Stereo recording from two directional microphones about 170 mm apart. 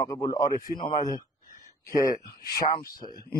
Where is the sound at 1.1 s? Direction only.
50° left (ahead or behind).